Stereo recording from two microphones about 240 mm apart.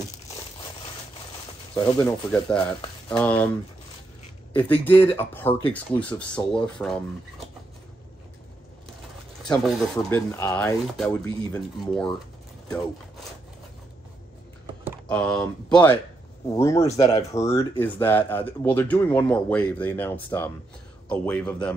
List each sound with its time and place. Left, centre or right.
1.8 s speech: centre
4.6 s speech: centre
9.5 s speech: centre
15.0 s speech: centre
16.8 s speech: left
17.2 s speech: centre